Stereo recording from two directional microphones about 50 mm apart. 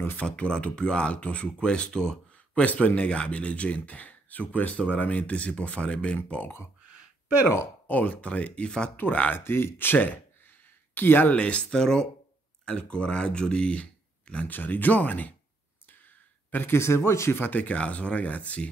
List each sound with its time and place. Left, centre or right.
0.2 s speech: left
2.5 s speech: left
6.9 s a sound: right
7.8 s speech: left; by 8.9 s centre
9.3 s speech: left
11.0 s speech: left
11.3 s speech: left
11.7 s speech: centre
14.5 s speech: left
16.4 s a sound: left
16.7 s speech: left
17.3 s speech: left